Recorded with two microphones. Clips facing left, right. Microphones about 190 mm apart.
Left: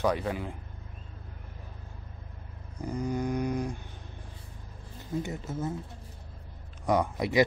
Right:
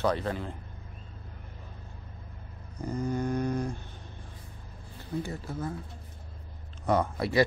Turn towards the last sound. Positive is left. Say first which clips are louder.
# even
turn(degrees=15)  # may be behind; listen again after turning